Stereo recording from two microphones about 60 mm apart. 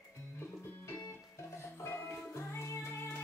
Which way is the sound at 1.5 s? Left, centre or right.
Left.